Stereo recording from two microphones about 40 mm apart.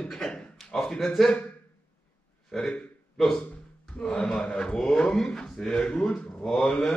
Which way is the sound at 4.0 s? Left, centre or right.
Centre.